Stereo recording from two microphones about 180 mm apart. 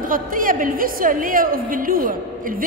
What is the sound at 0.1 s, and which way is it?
A woman's voice, 50° right (ahead or behind).